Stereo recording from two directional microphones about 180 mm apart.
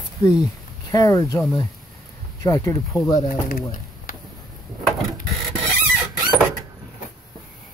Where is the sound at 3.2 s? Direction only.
50° left (ahead or behind).